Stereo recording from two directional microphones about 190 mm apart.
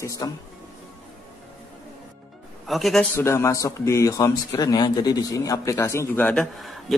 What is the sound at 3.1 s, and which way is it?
A man's voice, 15° left (ahead or behind).